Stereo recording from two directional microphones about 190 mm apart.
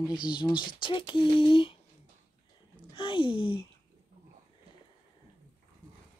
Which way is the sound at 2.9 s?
25° left (ahead or behind).